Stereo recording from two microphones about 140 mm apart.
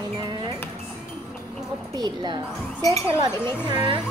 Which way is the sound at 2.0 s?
30° right (ahead or behind).